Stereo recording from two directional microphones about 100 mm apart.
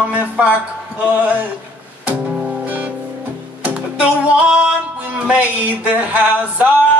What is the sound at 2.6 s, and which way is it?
Music, 15° right (ahead or behind).